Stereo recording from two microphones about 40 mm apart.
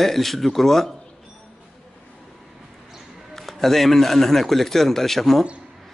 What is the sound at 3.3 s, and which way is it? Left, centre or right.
Speech, centre.